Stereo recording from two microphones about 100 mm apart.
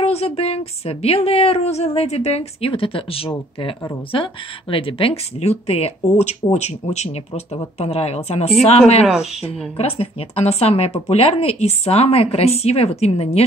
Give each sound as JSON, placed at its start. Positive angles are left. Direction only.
{"t": 0.0, "sound": "speech", "side_deg": 90}
{"t": 9.0, "sound": "speech", "side_deg": -5}
{"t": 9.8, "sound": "speech", "side_deg": 85}